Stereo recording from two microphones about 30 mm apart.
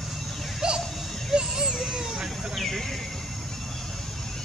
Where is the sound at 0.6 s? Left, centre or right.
Right.